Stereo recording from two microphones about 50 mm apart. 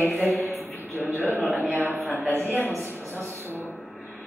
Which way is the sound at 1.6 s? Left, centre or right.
Right.